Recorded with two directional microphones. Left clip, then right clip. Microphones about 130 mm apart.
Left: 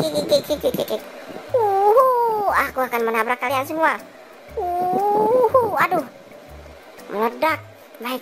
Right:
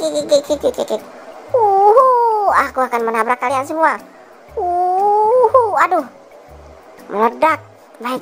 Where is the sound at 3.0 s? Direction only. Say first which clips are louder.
Right 4 dB; 10° right (ahead or behind).